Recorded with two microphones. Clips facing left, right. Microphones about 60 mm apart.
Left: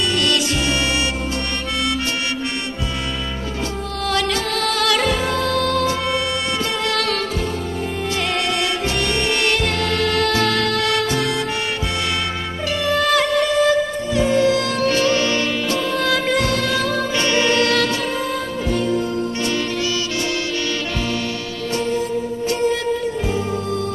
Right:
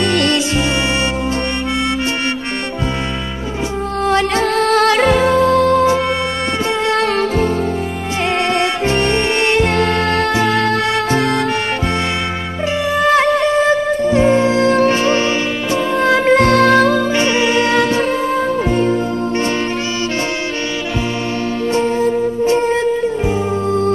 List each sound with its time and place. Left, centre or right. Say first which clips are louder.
0.0 s music: right 5 dB; right
4.0 s music: right 6 dB; right
8.5 s music: right 6 dB; right
10.3 s music: right 4 dB; right
12.8 s music: right 3 dB; centre
13.1 s music: right 6 dB; right
16.4 s music: right 10 dB; right
17.1 s music: right 4 dB; right
21.7 s music: right 5 dB; right